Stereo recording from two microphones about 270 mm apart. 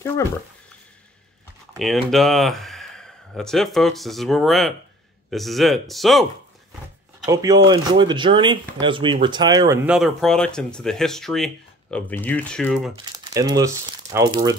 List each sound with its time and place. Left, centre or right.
1.8 s speech: centre
7.2 s speech: centre
12.9 s speech: centre